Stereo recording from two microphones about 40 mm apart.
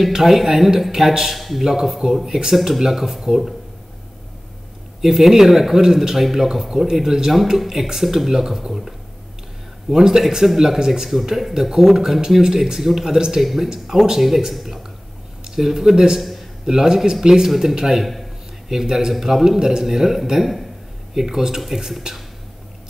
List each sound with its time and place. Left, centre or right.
0.0 s speech: centre
5.0 s speech: centre